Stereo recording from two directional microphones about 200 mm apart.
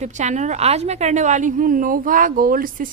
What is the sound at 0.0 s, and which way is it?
Speech, 35° right (ahead or behind).